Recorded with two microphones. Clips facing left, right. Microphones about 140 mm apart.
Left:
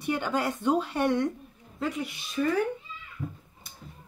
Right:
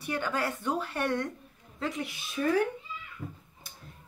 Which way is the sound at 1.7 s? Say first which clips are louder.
Left 3 dB; centre (ahead or behind).